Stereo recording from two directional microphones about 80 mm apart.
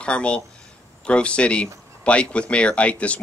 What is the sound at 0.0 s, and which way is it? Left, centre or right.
Speech, centre.